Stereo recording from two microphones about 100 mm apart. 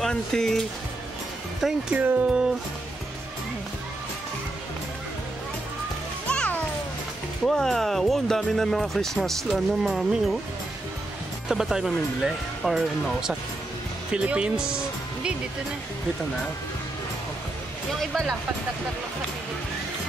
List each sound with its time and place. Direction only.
0.0 s speech: 5° left (ahead or behind)
2.0 s speech: 15° right (ahead or behind)
6.2 s music: 10° left (ahead or behind)
7.4 s speech: 5° left (ahead or behind)
11.4 s speech: 5° right (ahead or behind)